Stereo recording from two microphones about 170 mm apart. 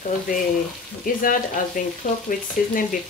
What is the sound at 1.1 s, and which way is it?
Speech, 55° left (ahead or behind).